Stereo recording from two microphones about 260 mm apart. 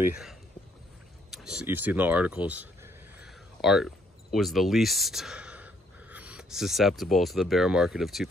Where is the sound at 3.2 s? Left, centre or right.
Centre.